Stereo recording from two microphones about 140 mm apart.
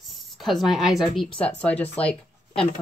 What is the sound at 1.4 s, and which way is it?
Speech, 10° left (ahead or behind).